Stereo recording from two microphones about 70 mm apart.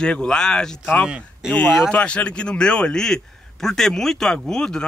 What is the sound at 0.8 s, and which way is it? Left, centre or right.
A man's voice, left.